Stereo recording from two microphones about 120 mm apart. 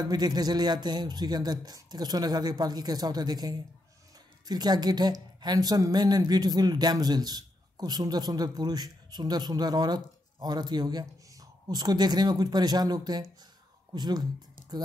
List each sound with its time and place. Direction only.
0.0 s a woman's voice: 35° right (ahead or behind)